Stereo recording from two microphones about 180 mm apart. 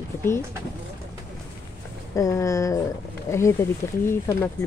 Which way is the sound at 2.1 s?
15° left (ahead or behind).